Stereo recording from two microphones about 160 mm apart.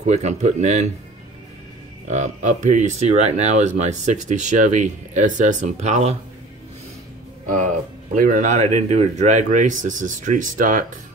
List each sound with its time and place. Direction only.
0.0 s speech: 45° right (ahead or behind)
2.0 s speech: 45° right (ahead or behind)
8.1 s speech: 55° right (ahead or behind)